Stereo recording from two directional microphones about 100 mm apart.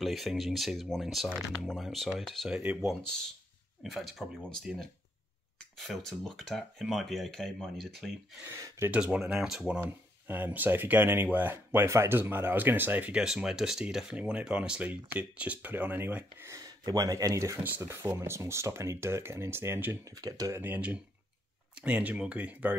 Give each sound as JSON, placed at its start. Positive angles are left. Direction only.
{"t": 0.0, "sound": "speech", "side_deg": 0}
{"t": 3.8, "sound": "speech", "side_deg": 0}
{"t": 8.6, "sound": "speech", "side_deg": -25}
{"t": 8.9, "sound": "speech", "side_deg": -10}
{"t": 9.8, "sound": "speech", "side_deg": -20}
{"t": 16.4, "sound": "speech", "side_deg": -35}
{"t": 20.2, "sound": "speech", "side_deg": -40}
{"t": 20.6, "sound": "speech", "side_deg": -15}